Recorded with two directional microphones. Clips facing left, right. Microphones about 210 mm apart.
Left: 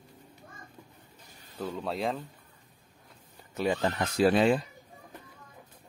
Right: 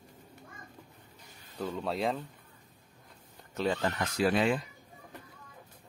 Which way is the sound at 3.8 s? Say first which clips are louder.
Left 4 dB; 25° left (ahead or behind).